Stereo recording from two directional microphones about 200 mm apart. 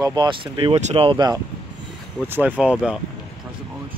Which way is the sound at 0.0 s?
20° right (ahead or behind).